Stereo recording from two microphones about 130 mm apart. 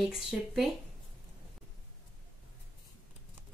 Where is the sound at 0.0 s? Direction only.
Centre (ahead or behind).